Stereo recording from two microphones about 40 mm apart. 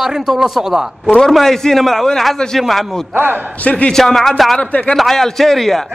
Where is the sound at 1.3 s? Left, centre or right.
Centre.